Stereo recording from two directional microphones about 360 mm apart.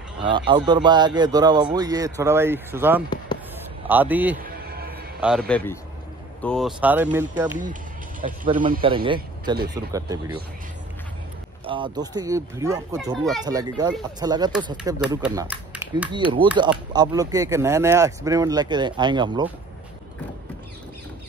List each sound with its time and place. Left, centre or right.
0.2 s speech: centre
4.4 s music: right
5.2 s speech: centre
6.4 s speech: centre
8.2 s speech: right
11.6 s speech: centre